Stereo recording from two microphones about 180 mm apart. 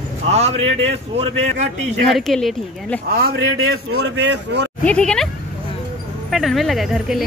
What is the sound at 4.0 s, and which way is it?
Speech, 70° right (ahead or behind).